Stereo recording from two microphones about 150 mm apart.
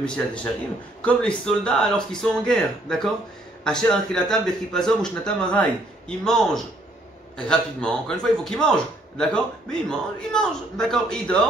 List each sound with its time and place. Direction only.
0.0 s a man's voice: 5° left (ahead or behind)